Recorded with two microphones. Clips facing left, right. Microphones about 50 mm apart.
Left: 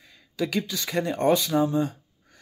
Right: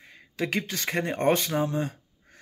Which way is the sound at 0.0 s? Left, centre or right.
Right.